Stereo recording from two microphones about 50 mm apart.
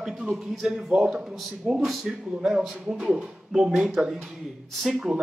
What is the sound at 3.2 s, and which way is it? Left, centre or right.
Speech, centre.